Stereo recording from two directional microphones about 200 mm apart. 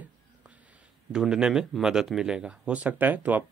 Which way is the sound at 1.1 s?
5° right (ahead or behind).